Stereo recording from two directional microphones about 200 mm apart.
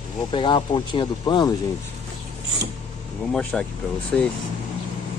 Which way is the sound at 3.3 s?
5° left (ahead or behind).